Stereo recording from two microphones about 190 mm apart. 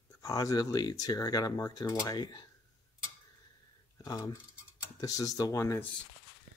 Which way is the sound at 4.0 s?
20° left (ahead or behind).